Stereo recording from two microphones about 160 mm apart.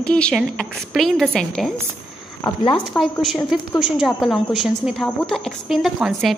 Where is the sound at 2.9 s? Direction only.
Centre (ahead or behind).